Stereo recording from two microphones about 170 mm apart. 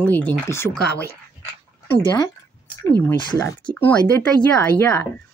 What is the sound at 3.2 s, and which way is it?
Speech, 25° left (ahead or behind).